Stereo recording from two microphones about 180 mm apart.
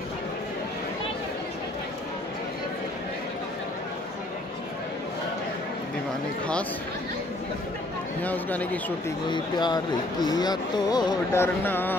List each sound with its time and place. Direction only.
8.2 s speech: 10° left (ahead or behind)
9.3 s speech: 25° left (ahead or behind)